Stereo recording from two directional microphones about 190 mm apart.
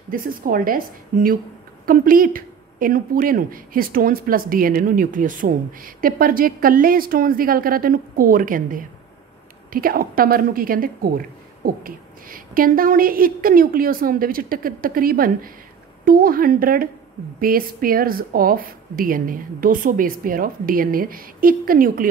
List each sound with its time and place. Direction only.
0.1 s a woman's voice: 50° right (ahead or behind)